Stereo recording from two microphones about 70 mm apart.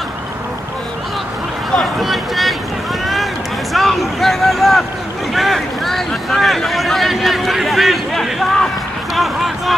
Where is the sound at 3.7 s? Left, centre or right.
Centre.